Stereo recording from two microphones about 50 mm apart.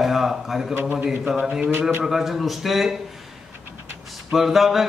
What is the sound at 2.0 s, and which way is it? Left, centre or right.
Speech, centre.